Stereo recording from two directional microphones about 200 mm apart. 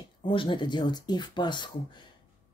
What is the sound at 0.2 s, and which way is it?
Speech, 25° left (ahead or behind).